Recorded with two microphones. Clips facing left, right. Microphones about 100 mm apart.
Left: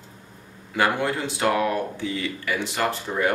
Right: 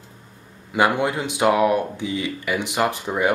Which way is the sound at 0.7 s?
20° right (ahead or behind).